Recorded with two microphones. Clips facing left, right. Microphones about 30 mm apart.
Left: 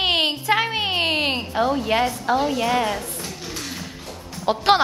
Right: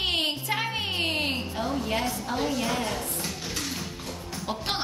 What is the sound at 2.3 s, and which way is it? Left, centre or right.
Speech, left.